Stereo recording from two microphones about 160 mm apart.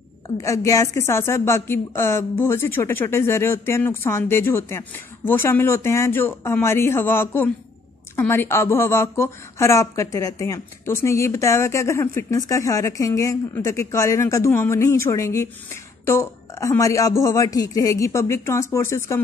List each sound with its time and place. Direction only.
0.4 s speech: 20° left (ahead or behind)